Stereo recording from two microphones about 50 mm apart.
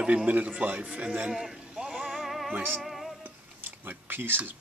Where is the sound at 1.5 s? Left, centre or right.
Centre.